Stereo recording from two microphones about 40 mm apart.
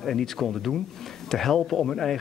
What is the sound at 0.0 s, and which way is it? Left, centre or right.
Speech, centre.